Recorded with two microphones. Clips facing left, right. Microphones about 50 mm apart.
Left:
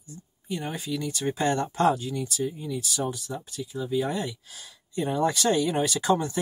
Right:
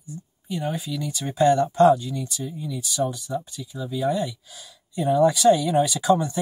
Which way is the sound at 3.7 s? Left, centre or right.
Left.